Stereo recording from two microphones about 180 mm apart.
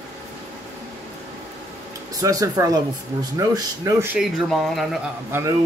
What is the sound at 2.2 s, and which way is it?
Speech, 20° right (ahead or behind).